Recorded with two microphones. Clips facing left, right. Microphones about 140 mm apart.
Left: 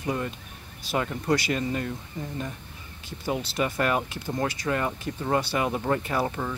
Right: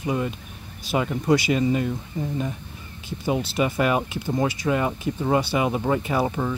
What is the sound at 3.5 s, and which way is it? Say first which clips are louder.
Speech: right 3 dB; 10° right (ahead or behind).